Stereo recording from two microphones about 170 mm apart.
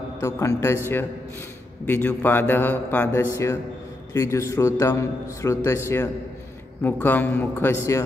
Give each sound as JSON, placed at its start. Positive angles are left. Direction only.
{"t": 0.2, "sound": "a man's voice", "side_deg": 15}